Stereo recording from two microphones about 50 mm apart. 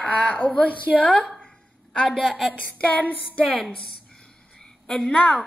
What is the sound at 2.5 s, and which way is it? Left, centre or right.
Female singing, left.